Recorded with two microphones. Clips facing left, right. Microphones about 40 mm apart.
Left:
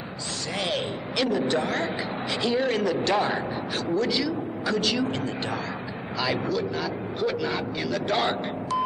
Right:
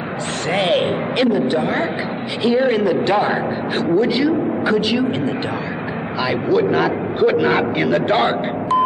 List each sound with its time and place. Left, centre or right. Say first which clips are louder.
0.5 s a sound: right 12 dB; right
1.3 s a woman's voice: right 7 dB; centre
6.5 s a man's voice: right 12 dB; right